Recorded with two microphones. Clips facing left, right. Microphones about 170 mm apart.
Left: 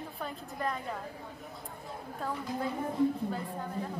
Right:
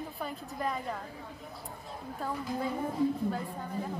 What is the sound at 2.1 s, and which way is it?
Speech, centre (ahead or behind).